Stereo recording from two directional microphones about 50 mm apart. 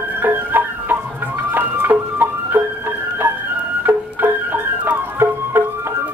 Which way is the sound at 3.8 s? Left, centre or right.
Right.